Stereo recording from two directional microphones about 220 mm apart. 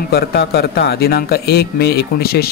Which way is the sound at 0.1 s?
45° left (ahead or behind).